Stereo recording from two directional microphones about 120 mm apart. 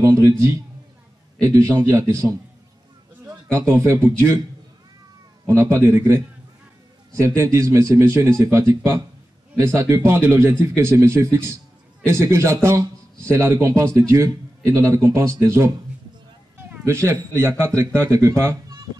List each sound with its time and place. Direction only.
0.0 s speech: 25° right (ahead or behind)
5.5 s speech: 25° right (ahead or behind)
16.8 s speech: 25° right (ahead or behind)